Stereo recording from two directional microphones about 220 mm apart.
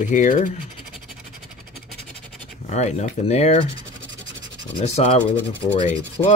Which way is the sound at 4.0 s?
55° right (ahead or behind).